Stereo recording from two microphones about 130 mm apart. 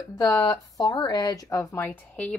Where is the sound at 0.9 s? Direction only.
35° left (ahead or behind); by 2.4 s 10° left (ahead or behind).